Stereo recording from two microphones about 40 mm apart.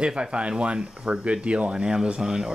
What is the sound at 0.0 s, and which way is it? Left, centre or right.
Speech, right.